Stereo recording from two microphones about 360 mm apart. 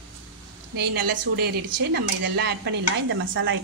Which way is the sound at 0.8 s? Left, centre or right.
Right.